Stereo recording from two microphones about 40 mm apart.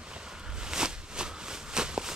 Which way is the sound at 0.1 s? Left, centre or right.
Centre.